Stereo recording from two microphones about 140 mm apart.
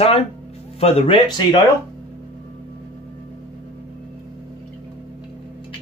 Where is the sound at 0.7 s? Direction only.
45° left (ahead or behind).